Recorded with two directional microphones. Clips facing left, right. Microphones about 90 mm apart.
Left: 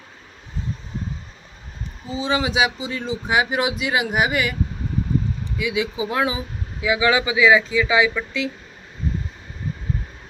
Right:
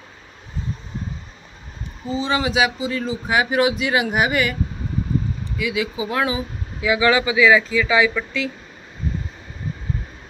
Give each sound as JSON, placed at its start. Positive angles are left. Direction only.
{"t": 2.0, "sound": "speech", "side_deg": 15}
{"t": 5.6, "sound": "speech", "side_deg": 20}
{"t": 8.1, "sound": "speech", "side_deg": 5}